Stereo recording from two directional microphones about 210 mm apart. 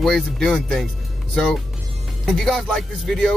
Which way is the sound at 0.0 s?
Centre (ahead or behind).